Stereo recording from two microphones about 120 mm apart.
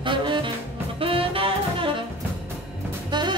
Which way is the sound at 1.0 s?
50° right (ahead or behind).